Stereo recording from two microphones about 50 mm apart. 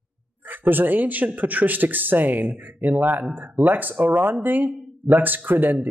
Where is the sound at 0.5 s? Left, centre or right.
Right.